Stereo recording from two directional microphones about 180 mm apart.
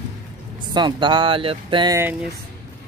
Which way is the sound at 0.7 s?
25° right (ahead or behind).